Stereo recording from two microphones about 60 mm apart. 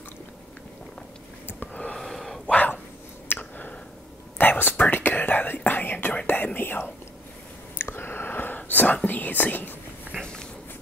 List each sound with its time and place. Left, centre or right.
1.5 s gasp: left
2.0 s gasp: centre
2.4 s dog: left
3.3 s a sound: left
4.4 s whispering: left